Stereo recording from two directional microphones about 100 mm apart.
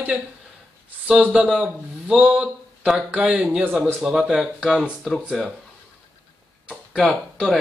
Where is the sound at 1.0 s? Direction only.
5° right (ahead or behind).